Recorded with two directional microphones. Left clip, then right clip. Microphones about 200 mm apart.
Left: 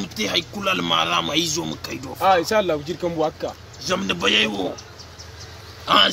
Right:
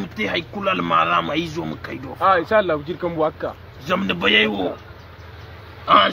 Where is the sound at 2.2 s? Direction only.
35° left (ahead or behind); by 3.5 s 15° left (ahead or behind).